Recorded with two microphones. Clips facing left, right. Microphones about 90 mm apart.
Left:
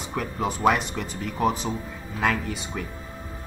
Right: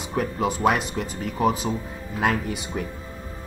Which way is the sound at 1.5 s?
5° right (ahead or behind).